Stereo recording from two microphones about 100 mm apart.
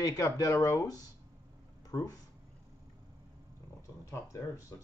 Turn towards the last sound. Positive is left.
turn(degrees=30)  # may be behind; listen again after turning